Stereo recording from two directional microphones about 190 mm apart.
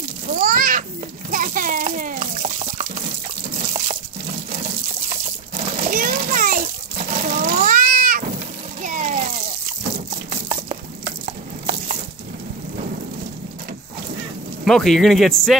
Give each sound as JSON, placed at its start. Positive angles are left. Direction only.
{"t": 0.3, "sound": "a sound", "side_deg": -50}
{"t": 1.3, "sound": "water", "side_deg": -45}
{"t": 3.5, "sound": "liquid", "side_deg": -40}
{"t": 5.1, "sound": "water", "side_deg": -40}
{"t": 9.9, "sound": "a sound", "side_deg": -50}
{"t": 14.6, "sound": "a man's voice", "side_deg": 0}